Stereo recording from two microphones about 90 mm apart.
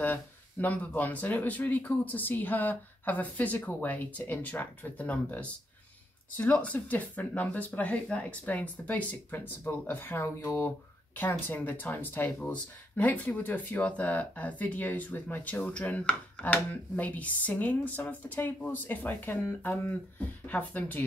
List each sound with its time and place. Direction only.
0.0 s speech: 20° left (ahead or behind)